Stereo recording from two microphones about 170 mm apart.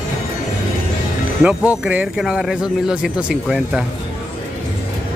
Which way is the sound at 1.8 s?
5° right (ahead or behind).